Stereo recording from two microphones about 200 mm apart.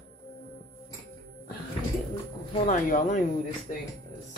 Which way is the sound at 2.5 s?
35° left (ahead or behind).